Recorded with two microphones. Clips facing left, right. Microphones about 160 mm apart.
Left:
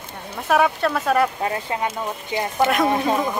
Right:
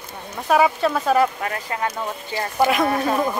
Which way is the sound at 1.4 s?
25° left (ahead or behind).